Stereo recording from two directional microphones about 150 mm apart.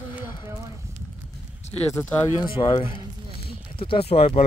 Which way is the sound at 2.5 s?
35° left (ahead or behind).